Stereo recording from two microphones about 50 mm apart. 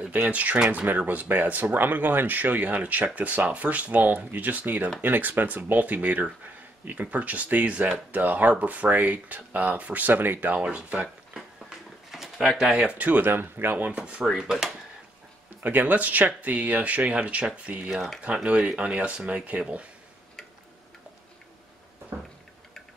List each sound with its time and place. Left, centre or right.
0.1 s speech: right
10.6 s speech: right
12.1 s pigeon: centre
12.5 s speech: centre
12.9 s speech: right
13.9 s speech: right
14.4 s speech: centre
15.6 s speech: right
17.7 s speech: right
18.2 s speech: right